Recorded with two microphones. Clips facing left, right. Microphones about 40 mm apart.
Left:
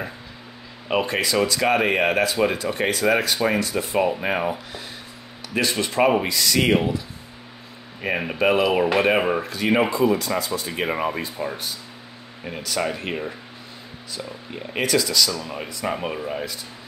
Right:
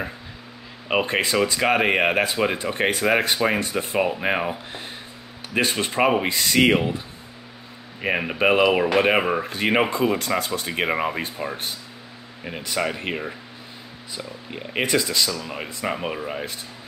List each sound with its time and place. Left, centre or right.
1.0 s speech: right
4.0 s speech: right
5.5 s speech: right
6.2 s speech: right
8.0 s speech: centre
9.4 s speech: right
9.9 s speech: right
10.9 s speech: centre
15.8 s speech: centre